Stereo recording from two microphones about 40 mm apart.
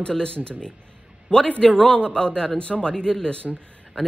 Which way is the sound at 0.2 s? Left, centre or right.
Left.